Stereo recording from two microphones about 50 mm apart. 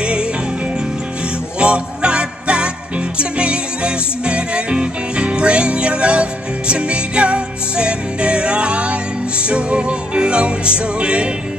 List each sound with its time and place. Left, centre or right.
0.0 s music: centre
1.6 s music: right